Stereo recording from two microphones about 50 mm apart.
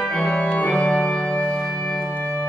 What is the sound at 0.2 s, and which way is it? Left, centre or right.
Organ, left.